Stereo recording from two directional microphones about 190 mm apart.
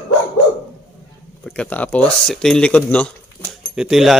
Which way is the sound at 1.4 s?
5° left (ahead or behind).